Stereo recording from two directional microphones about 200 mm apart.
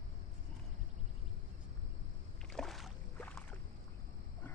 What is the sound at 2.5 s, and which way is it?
Boat, centre (ahead or behind).